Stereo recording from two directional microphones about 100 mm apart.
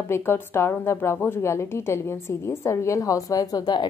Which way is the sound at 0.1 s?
25° left (ahead or behind).